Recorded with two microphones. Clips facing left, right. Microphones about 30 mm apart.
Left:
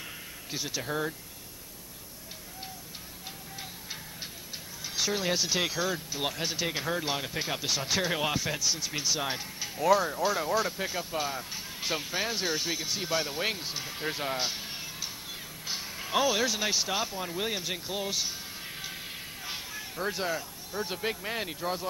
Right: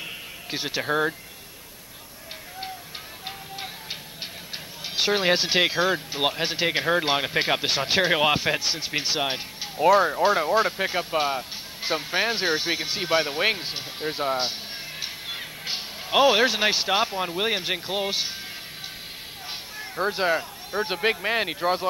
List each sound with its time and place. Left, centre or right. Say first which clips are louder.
0.0 s a sound: right 6 dB; right
3.3 s music: right 7 dB; right
4.8 s speech: right 8 dB; right
19.4 s speech: right 3 dB; right